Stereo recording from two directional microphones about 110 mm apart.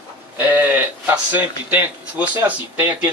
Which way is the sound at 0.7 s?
15° right (ahead or behind).